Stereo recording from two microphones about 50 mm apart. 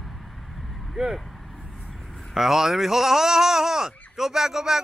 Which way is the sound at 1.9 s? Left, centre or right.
Centre.